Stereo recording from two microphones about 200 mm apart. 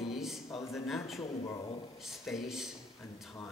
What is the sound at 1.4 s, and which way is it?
Speech, 20° left (ahead or behind).